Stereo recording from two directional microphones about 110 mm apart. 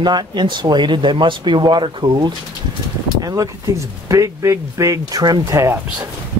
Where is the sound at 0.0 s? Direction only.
40° right (ahead or behind).